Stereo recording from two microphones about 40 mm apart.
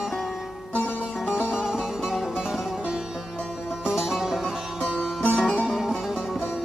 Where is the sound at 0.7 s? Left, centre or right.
Left.